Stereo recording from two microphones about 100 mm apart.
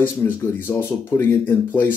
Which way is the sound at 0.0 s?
20° left (ahead or behind).